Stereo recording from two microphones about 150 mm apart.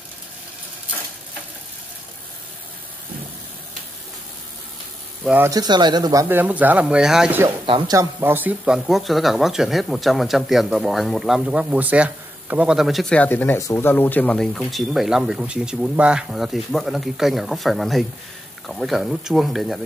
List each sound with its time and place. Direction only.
5.2 s speech: 10° right (ahead or behind)
5.5 s speech: 25° right (ahead or behind)
6.2 s speech: 10° right (ahead or behind)
7.9 s speech: 20° right (ahead or behind); by 19.8 s centre (ahead or behind)